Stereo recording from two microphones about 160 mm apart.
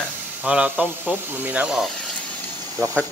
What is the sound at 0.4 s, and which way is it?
Speech, 10° right (ahead or behind).